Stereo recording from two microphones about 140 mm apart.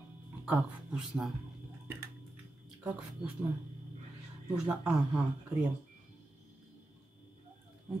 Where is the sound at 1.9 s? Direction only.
15° right (ahead or behind).